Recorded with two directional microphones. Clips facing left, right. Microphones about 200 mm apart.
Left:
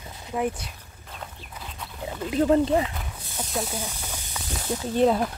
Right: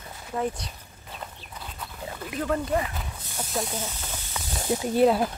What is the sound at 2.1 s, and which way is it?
Speech, 25° left (ahead or behind).